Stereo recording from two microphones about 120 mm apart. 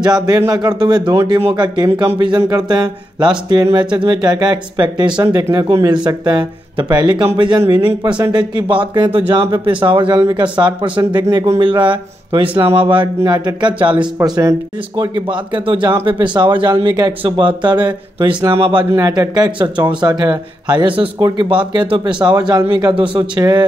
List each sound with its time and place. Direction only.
0.0 s speech: 35° right (ahead or behind)
11.6 s speech: 45° right (ahead or behind)
14.1 s speech: 30° right (ahead or behind)
15.0 s speech: 40° right (ahead or behind)